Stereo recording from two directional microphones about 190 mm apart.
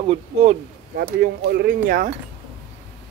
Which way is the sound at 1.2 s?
55° right (ahead or behind).